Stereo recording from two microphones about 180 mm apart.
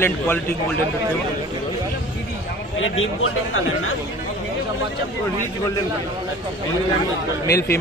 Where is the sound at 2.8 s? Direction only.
90° left.